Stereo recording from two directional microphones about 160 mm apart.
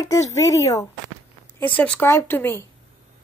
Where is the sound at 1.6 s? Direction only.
10° left (ahead or behind).